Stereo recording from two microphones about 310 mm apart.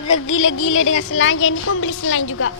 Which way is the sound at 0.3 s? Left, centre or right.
Left.